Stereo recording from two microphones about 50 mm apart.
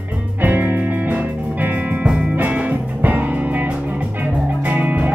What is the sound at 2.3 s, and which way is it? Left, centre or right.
Music, right.